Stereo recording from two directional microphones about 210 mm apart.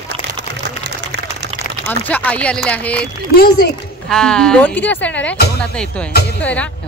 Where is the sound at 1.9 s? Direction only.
10° left (ahead or behind).